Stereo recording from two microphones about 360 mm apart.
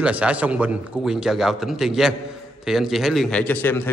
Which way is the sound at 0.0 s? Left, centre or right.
Centre.